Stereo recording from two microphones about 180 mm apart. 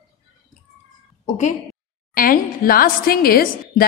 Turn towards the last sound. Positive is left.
turn(degrees=55)  # may be behind; listen again after turning